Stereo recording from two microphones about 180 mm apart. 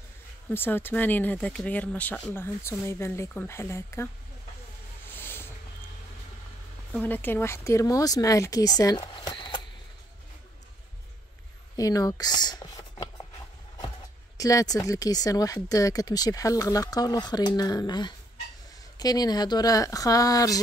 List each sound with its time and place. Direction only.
0.5 s speech: 10° left (ahead or behind)
5.1 s a sound: 10° left (ahead or behind)
6.9 s speech: 10° left (ahead or behind); by 9.6 s 25° left (ahead or behind)
11.7 s speech: 20° left (ahead or behind)
14.3 s speech: 20° left (ahead or behind)